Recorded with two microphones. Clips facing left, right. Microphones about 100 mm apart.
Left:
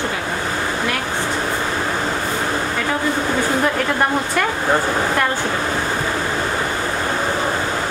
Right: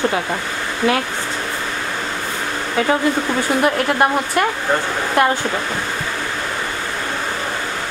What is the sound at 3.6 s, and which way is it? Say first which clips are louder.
Speech: right 2 dB; 10° right (ahead or behind).